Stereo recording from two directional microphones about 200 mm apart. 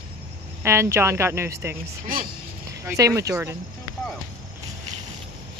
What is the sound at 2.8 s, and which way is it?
Speech, 15° right (ahead or behind).